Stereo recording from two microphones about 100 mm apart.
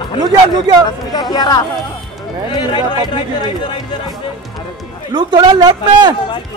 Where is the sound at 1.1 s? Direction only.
45° left (ahead or behind).